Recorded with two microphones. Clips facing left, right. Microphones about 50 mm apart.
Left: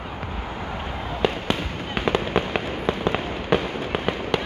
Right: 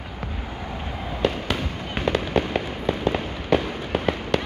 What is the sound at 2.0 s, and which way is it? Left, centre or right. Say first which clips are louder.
Fireworks: even; left.